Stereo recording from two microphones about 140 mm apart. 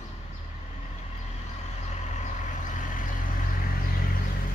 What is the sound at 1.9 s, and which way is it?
Vehicle, 55° left (ahead or behind).